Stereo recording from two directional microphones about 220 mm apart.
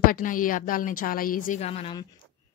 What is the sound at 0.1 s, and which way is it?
Speech, 40° left (ahead or behind).